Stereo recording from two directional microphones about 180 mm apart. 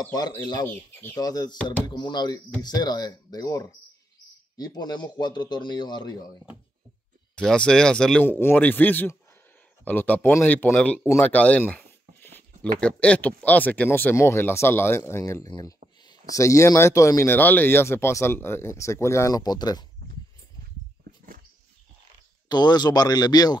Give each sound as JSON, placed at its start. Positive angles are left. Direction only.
{"t": 0.1, "sound": "a man's voice", "side_deg": 20}
{"t": 0.7, "sound": "speech", "side_deg": 10}
{"t": 1.2, "sound": "a man's voice", "side_deg": 20}
{"t": 1.6, "sound": "speech", "side_deg": 5}
{"t": 1.9, "sound": "a man's voice", "side_deg": 25}
{"t": 7.3, "sound": "speech", "side_deg": 5}
{"t": 22.5, "sound": "a man's voice", "side_deg": 25}